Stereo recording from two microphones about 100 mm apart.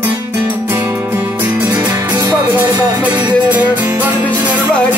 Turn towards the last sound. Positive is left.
turn(degrees=-15)  # may be behind; listen again after turning